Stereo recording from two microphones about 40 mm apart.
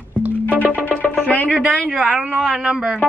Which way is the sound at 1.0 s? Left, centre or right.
Left.